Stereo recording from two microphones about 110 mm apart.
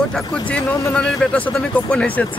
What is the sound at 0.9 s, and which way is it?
Speech, 10° left (ahead or behind).